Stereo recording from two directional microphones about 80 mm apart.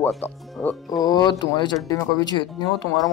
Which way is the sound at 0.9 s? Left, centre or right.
Left.